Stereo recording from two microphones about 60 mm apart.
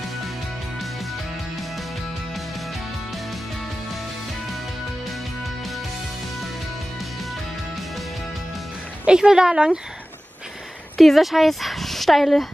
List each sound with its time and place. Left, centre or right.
9.0 s a woman's voice: centre
11.0 s speech: centre